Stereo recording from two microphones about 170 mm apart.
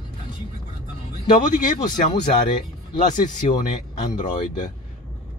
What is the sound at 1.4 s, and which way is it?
Speech, 50° left (ahead or behind).